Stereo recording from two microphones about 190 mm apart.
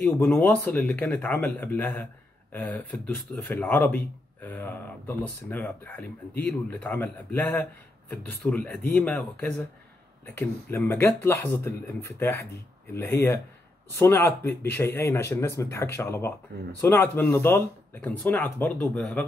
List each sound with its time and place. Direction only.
0.0 s speech: 5° left (ahead or behind)